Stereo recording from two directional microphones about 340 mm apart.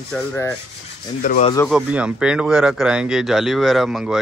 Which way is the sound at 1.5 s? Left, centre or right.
Centre.